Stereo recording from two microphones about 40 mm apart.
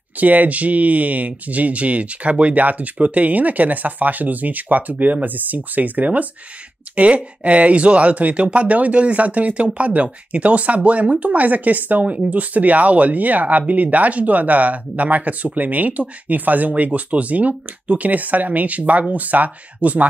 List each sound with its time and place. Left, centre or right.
0.2 s speech: right